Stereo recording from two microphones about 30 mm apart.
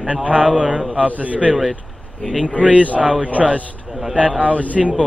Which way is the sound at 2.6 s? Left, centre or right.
Right.